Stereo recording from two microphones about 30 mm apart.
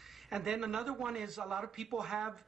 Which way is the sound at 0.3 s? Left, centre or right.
Centre.